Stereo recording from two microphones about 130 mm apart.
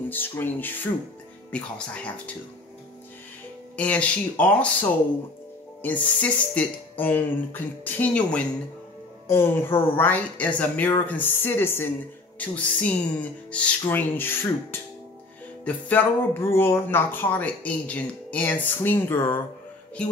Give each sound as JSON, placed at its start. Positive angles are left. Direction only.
{"t": 0.1, "sound": "speech", "side_deg": 15}
{"t": 3.7, "sound": "speech", "side_deg": 10}